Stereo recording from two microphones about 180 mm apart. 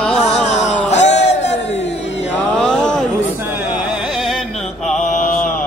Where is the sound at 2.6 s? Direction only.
5° left (ahead or behind).